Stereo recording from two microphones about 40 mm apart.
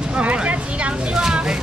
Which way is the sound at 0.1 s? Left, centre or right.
Right.